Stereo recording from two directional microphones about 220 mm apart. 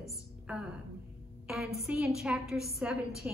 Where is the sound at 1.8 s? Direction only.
5° right (ahead or behind).